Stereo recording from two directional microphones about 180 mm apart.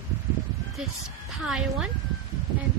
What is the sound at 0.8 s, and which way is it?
A woman's voice, centre (ahead or behind).